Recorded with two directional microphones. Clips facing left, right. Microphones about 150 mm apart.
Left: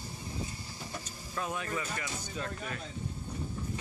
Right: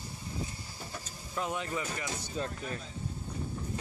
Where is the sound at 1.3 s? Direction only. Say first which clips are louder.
Right 1 dB; 20° right (ahead or behind).